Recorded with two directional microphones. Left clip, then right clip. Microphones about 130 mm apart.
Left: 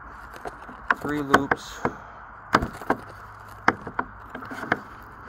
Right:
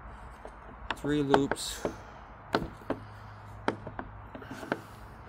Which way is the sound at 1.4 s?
70° right (ahead or behind).